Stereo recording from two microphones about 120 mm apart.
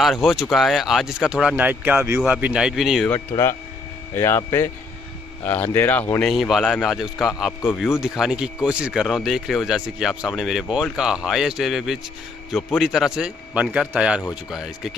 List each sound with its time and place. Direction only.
0.0 s speech: centre (ahead or behind)
3.3 s speech: 45° left (ahead or behind)
4.2 s speech: 25° left (ahead or behind)
6.2 s speech: centre (ahead or behind)